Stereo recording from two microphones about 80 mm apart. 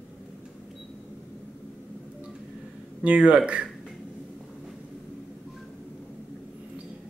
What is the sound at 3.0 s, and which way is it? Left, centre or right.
Speech, centre.